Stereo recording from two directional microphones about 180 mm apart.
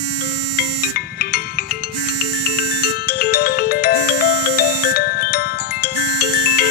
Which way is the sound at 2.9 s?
60° left (ahead or behind).